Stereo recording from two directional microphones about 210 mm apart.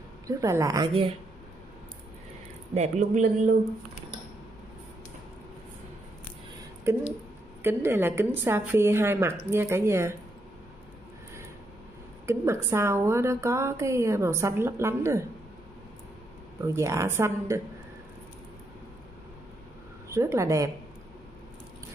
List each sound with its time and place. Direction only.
0.3 s a woman's voice: 15° right (ahead or behind)
2.7 s speech: 35° right (ahead or behind)
7.6 s a woman's voice: 10° right (ahead or behind)
12.3 s a woman's voice: 15° right (ahead or behind)
16.6 s a woman's voice: 15° right (ahead or behind)
20.1 s a woman's voice: 15° right (ahead or behind)